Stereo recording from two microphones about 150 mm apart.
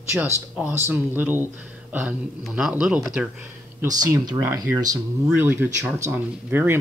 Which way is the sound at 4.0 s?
25° right (ahead or behind).